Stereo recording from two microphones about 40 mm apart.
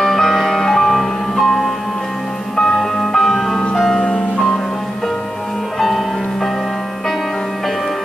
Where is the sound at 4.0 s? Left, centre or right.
Left.